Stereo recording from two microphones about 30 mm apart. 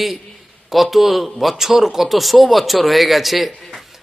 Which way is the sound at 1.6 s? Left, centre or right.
Centre.